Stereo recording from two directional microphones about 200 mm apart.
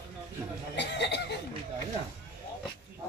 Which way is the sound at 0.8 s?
60° left (ahead or behind).